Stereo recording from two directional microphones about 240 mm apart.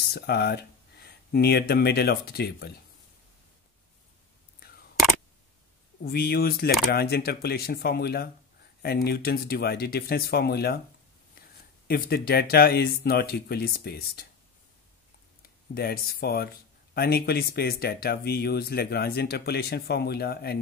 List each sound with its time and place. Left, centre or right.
0.1 s speech: left
6.0 s speech: left
11.9 s speech: left
15.7 s speech: left